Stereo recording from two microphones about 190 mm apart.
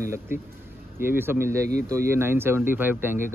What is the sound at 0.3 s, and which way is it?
Speech, 10° right (ahead or behind).